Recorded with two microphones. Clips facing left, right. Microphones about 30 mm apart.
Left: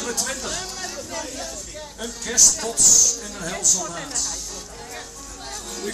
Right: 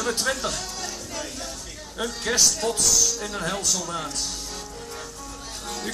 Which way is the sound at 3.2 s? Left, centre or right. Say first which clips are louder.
Even; right.